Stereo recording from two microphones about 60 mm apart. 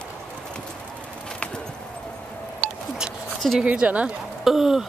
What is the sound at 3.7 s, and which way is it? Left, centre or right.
Speech, right.